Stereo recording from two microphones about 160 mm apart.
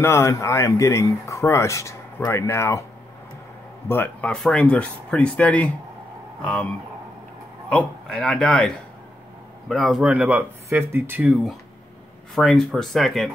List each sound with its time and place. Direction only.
0.0 s speech: 15° left (ahead or behind)
3.9 s speech: 10° left (ahead or behind)
7.7 s a man's voice: 5° left (ahead or behind); by 11.3 s 10° right (ahead or behind)
12.4 s a man's voice: centre (ahead or behind)